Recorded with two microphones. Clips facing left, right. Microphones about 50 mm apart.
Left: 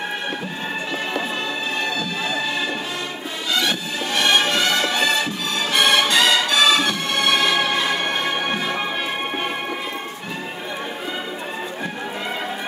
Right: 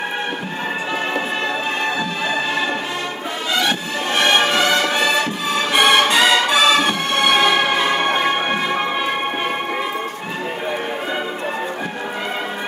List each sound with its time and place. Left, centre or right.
3.6 s music: right